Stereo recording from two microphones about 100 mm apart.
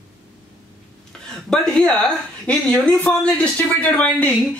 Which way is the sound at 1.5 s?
10° left (ahead or behind).